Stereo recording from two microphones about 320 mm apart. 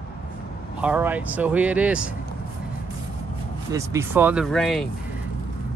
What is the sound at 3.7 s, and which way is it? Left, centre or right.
Speech, centre.